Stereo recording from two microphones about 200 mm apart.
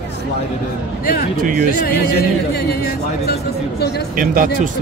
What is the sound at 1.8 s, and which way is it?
Speech, 50° left (ahead or behind).